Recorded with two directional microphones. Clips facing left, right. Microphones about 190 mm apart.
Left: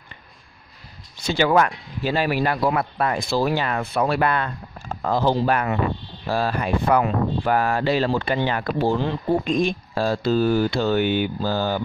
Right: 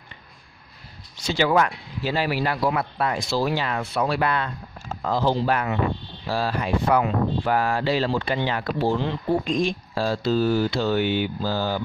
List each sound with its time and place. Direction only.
1.1 s speech: 55° left (ahead or behind)